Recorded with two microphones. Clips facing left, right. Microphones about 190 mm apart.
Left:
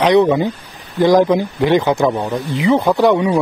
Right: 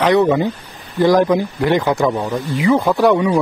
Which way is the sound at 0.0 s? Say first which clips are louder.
Left 1 dB; 15° left (ahead or behind).